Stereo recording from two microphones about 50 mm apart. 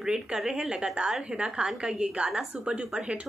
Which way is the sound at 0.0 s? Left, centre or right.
Centre.